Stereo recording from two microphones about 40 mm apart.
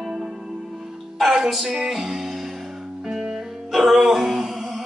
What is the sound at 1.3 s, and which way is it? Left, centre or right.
Speech, centre.